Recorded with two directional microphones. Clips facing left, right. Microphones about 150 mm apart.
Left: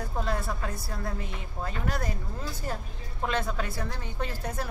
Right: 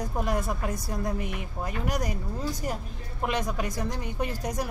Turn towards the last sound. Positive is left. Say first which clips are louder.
# right 3 dB
turn(degrees=-15)  # may be behind; listen again after turning